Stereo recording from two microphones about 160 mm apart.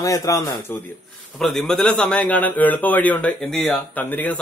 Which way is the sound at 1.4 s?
Centre (ahead or behind).